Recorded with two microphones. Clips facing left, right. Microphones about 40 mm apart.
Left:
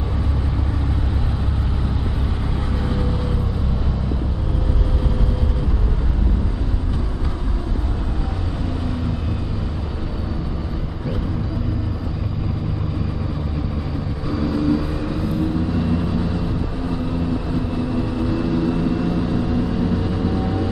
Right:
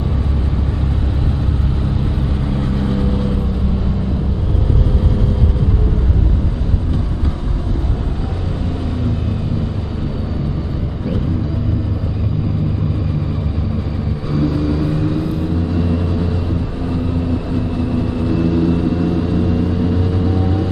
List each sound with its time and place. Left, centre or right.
2.5 s vehicle: centre
14.8 s vehicle: centre
18.8 s vehicle: centre
20.1 s vehicle: centre